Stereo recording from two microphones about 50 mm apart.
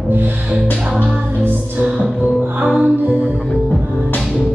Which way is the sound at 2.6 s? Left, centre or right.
Right.